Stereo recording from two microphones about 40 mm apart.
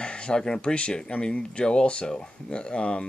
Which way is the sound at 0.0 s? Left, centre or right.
Left.